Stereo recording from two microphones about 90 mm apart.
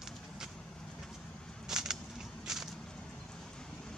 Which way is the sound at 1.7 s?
5° right (ahead or behind).